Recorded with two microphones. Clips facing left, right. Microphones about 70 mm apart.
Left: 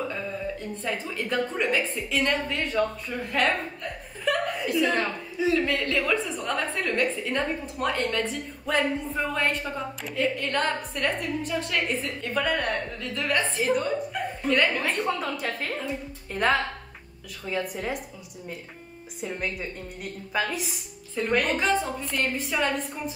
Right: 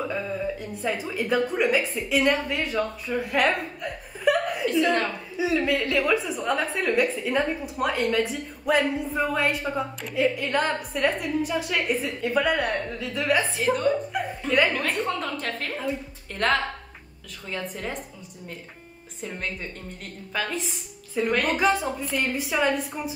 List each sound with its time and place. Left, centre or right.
0.8 s a woman's voice: centre
4.3 s chuckle: centre
4.6 s a woman's voice: centre
5.4 s a woman's voice: centre
20.3 s a woman's voice: centre